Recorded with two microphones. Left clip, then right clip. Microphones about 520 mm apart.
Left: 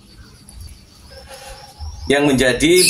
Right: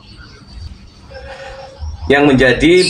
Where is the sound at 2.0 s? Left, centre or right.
Left.